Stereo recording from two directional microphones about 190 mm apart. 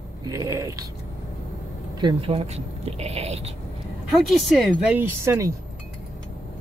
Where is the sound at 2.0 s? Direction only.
25° right (ahead or behind).